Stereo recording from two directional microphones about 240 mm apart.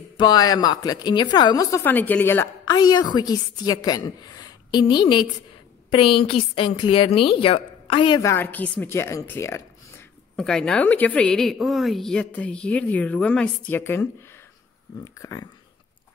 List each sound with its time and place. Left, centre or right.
0.2 s a woman's voice: centre